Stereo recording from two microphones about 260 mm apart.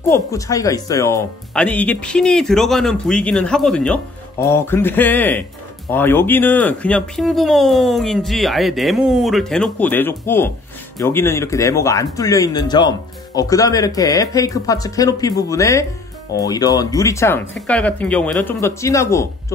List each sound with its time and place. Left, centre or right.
0.1 s speech: centre